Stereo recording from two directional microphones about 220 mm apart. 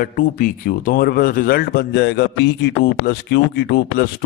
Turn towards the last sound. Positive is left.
turn(degrees=45)  # may be behind; listen again after turning